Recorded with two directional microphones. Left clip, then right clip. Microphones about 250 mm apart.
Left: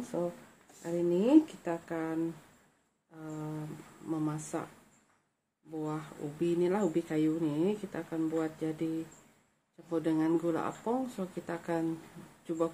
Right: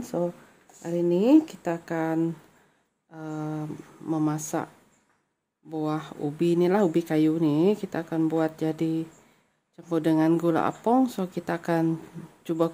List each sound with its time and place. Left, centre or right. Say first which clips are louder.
0.1 s speech: right 7 dB; right
3.2 s speech: right 8 dB; right
5.7 s speech: right 8 dB; right